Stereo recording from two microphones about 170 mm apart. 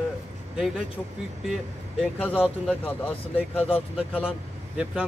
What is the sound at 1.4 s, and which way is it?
Speech, 5° right (ahead or behind).